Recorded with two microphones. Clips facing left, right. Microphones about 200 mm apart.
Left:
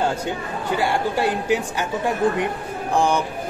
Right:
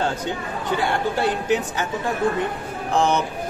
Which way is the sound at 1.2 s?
10° left (ahead or behind).